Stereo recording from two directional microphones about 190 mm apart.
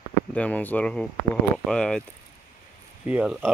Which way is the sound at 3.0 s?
5° right (ahead or behind).